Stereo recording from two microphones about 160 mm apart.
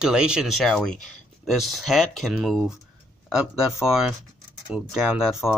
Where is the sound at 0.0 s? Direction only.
5° right (ahead or behind).